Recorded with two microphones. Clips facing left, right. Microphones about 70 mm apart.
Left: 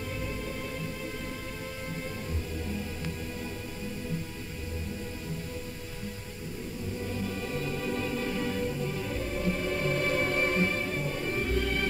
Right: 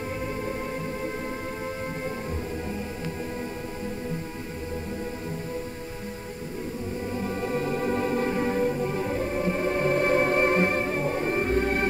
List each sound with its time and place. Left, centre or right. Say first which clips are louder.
7.2 s music: right 8 dB; right